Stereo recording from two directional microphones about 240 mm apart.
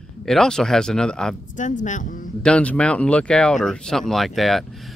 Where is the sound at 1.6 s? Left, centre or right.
Left.